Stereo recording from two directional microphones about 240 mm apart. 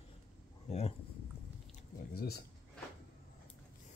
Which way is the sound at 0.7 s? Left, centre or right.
Left.